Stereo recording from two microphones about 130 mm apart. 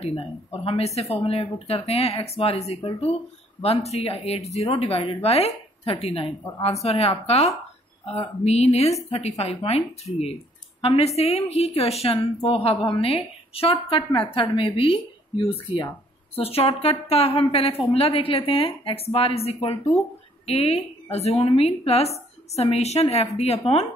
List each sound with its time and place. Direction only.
0.0 s a woman's voice: 50° left (ahead or behind)